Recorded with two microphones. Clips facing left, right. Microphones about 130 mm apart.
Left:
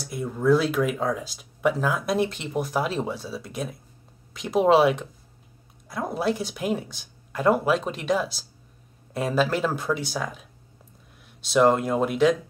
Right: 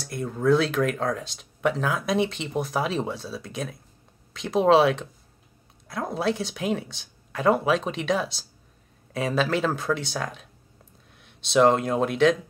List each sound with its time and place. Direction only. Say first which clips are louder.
0.0 s speech: even; 5° left (ahead or behind)